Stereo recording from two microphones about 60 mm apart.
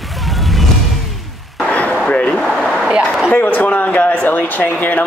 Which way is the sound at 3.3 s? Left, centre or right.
Left.